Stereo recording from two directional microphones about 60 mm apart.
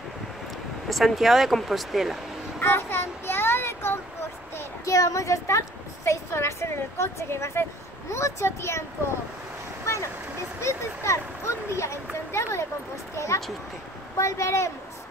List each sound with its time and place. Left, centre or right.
0.8 s speech: centre
2.6 s child singing: left
4.8 s speech: left
6.0 s speech: left
10.6 s speech: left